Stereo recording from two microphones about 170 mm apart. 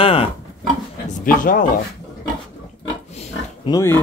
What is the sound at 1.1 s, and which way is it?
Speech, 55° left (ahead or behind).